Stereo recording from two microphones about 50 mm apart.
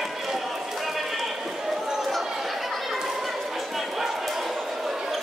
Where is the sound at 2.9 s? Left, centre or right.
Centre.